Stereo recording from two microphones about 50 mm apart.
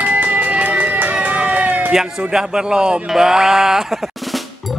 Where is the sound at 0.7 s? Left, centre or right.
Right.